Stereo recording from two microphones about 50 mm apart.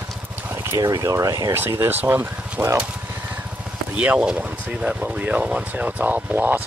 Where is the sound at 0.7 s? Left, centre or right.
Right.